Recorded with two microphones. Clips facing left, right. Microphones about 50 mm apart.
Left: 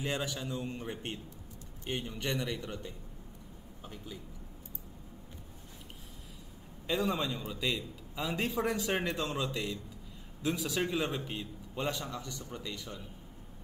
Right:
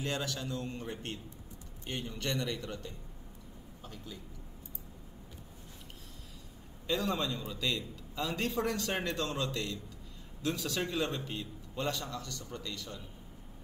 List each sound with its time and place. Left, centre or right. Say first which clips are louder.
0.0 s a man's voice: left 1 dB; centre
6.9 s a man's voice: left 1 dB; centre